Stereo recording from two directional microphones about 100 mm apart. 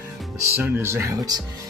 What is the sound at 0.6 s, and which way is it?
Speech, 25° right (ahead or behind).